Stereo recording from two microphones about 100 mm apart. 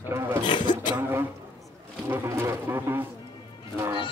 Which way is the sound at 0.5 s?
50° left (ahead or behind).